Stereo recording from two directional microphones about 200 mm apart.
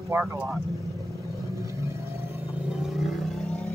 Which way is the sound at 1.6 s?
15° right (ahead or behind).